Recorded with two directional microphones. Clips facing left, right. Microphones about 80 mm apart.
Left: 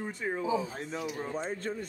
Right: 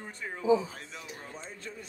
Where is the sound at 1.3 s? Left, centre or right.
Left.